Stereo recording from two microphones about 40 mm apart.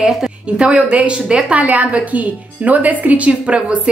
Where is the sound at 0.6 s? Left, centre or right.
Right.